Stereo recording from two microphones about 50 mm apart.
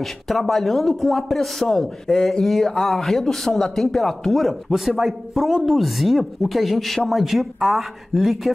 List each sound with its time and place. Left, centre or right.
0.0 s a man's voice: centre